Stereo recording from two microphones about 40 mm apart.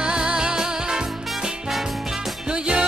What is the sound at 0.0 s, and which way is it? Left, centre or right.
Music, right.